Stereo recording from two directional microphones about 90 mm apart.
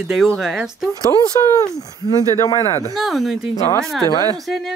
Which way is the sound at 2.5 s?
35° left (ahead or behind).